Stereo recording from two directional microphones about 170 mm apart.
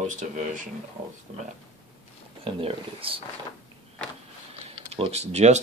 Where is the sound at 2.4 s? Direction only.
30° right (ahead or behind).